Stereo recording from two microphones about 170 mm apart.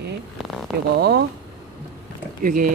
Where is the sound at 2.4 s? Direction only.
55° right (ahead or behind).